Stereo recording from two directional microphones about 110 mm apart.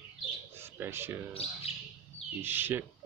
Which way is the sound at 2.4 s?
20° right (ahead or behind).